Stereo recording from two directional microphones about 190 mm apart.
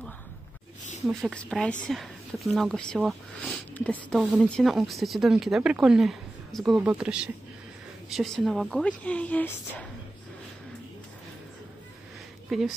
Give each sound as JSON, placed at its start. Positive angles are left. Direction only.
{"t": 1.0, "sound": "speech", "side_deg": 5}
{"t": 12.4, "sound": "speech", "side_deg": 0}